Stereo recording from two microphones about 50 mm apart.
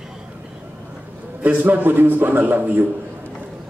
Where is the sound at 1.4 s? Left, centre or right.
Right.